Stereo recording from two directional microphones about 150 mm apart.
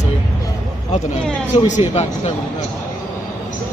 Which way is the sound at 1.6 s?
50° left (ahead or behind).